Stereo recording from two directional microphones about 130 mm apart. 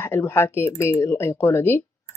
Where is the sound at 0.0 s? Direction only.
20° left (ahead or behind).